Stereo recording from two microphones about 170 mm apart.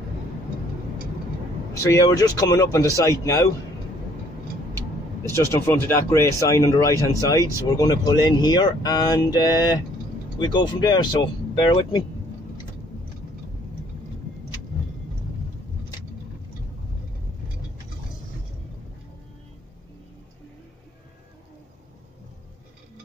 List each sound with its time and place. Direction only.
1.7 s speech: 20° left (ahead or behind)
5.3 s speech: 15° left (ahead or behind)